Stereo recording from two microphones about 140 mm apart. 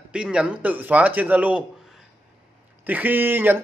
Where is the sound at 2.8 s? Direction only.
10° right (ahead or behind).